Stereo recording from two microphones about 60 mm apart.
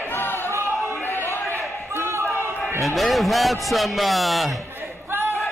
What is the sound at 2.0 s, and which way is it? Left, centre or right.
Basketball bounce, right.